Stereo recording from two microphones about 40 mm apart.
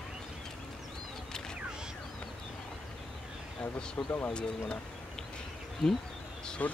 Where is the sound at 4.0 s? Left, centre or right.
Left.